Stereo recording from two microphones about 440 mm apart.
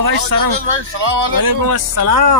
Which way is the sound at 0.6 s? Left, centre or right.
Right.